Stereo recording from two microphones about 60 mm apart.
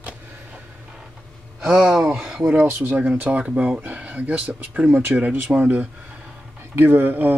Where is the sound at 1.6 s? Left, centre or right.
Centre.